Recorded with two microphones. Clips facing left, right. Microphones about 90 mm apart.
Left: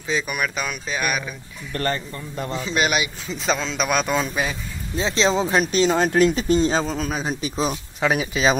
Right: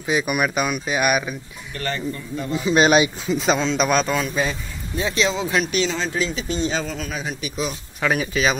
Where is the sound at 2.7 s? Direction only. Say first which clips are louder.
Right 7 dB; 30° right (ahead or behind).